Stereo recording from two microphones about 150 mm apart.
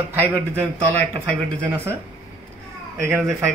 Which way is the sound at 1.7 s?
15° right (ahead or behind).